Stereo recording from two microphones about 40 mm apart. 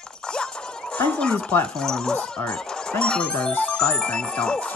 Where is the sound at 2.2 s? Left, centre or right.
Left.